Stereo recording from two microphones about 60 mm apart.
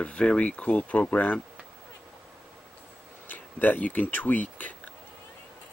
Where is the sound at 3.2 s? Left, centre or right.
Left.